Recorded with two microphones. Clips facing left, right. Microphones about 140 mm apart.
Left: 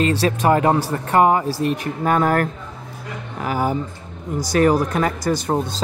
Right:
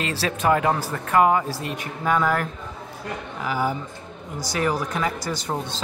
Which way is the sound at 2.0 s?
50° left (ahead or behind).